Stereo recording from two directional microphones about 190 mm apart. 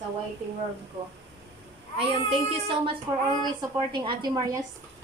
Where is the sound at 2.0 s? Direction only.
30° right (ahead or behind).